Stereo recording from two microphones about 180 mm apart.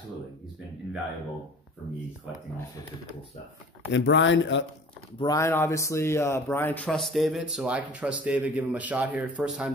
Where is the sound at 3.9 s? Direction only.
90° left.